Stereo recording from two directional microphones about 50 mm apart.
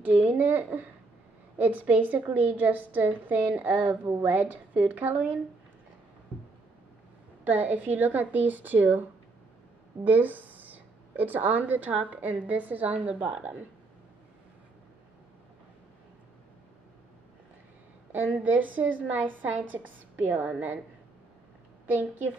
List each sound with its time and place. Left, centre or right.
0.0 s a woman's voice: right
7.4 s a woman's voice: right
10.0 s a woman's voice: right
18.1 s a woman's voice: right